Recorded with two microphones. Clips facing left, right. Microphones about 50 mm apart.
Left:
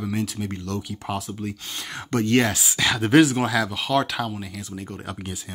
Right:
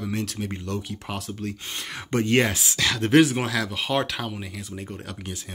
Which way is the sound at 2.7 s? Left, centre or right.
Centre.